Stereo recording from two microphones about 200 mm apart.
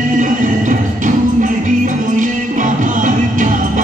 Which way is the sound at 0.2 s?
40° right (ahead or behind).